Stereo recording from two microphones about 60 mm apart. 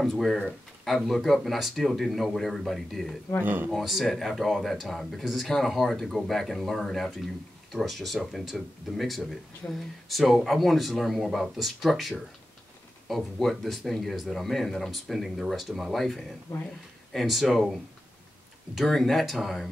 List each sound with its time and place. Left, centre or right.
0.0 s speech: centre
3.4 s speech: right
3.7 s speech: centre
18.8 s speech: centre